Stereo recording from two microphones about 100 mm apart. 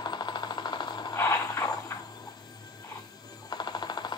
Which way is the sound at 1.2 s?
30° left (ahead or behind).